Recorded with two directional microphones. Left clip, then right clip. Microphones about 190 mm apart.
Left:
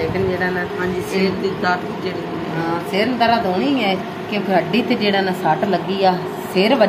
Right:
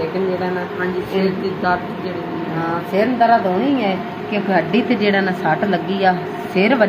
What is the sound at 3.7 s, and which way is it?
A woman's voice, 10° right (ahead or behind).